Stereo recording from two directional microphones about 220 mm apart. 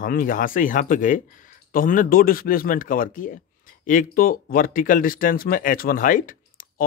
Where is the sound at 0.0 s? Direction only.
40° left (ahead or behind).